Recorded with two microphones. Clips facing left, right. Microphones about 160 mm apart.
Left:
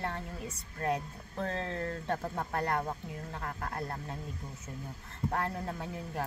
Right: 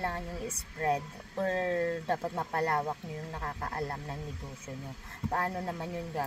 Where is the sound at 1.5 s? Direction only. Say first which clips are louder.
Right 7 dB; 40° right (ahead or behind).